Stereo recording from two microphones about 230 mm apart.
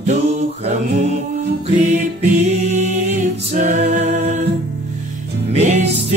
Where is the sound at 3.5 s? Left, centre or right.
Right.